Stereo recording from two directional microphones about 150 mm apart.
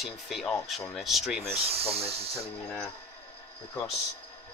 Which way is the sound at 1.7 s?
40° right (ahead or behind).